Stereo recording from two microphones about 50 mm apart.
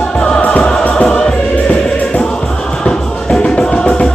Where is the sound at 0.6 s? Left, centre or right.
Centre.